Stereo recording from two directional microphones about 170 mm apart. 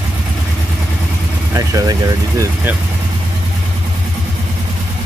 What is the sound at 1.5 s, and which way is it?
Speech, 20° right (ahead or behind).